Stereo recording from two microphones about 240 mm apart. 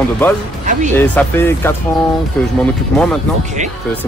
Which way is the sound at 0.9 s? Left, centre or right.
Centre.